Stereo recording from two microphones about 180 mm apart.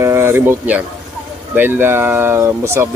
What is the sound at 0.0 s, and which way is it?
Speech, 15° right (ahead or behind).